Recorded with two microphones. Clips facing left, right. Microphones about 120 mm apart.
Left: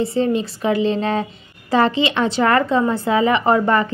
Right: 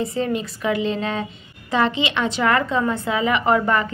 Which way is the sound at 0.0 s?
30° left (ahead or behind).